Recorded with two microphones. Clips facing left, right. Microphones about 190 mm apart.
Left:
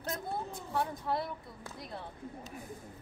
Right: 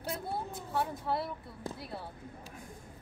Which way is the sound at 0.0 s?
5° right (ahead or behind).